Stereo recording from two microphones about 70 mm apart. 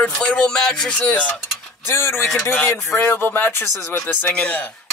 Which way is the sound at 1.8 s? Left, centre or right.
Left.